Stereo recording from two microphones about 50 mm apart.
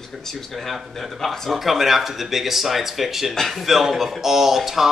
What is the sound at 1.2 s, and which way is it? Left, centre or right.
A man's voice, centre.